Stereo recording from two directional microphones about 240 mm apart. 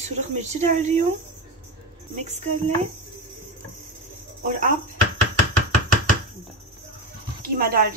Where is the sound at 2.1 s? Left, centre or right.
Right.